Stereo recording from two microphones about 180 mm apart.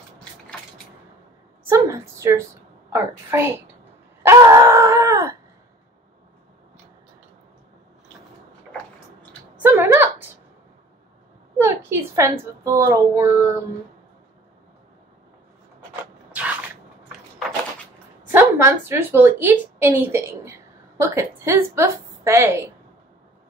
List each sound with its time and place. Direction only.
1.7 s a sound: 15° right (ahead or behind)
2.9 s a woman's voice: 15° right (ahead or behind)
4.3 s groan: 15° right (ahead or behind)
9.6 s a sound: 10° right (ahead or behind)
11.6 s a woman's voice: 15° right (ahead or behind)
16.0 s vehicle: 5° right (ahead or behind)
18.3 s a woman's voice: 15° right (ahead or behind)